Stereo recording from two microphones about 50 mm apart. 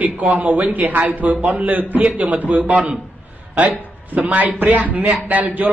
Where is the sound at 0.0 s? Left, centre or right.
Right.